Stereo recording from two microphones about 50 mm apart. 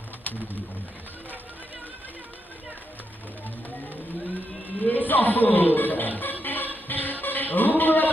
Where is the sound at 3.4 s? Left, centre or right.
Left.